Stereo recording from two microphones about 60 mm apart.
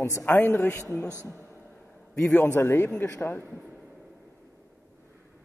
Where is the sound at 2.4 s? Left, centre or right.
Left.